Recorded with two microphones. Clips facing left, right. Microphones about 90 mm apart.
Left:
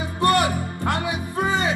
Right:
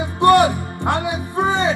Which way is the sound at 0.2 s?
25° right (ahead or behind).